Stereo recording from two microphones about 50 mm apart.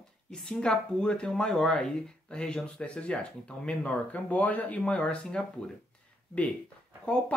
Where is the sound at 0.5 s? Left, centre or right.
Centre.